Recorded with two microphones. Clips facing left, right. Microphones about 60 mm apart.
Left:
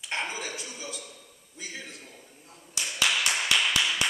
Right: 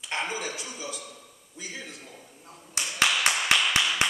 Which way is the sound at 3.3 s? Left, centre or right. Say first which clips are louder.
Right 3 dB; right.